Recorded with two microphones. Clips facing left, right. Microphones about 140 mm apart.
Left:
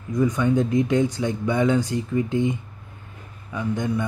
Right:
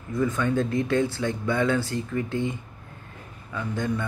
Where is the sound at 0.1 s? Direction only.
15° left (ahead or behind).